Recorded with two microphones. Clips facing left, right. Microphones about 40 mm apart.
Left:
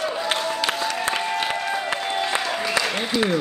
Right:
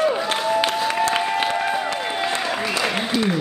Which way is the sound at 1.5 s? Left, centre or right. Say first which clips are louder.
Right 3 dB; centre.